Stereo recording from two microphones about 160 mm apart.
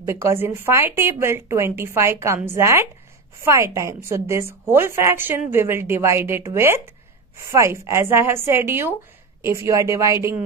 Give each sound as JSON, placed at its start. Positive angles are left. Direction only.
{"t": 0.0, "sound": "a woman's voice", "side_deg": -15}